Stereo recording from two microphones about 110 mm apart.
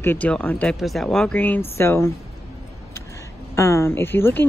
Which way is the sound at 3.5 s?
25° left (ahead or behind).